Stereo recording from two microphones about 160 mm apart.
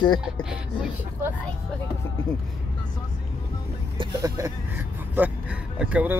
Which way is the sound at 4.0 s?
20° right (ahead or behind).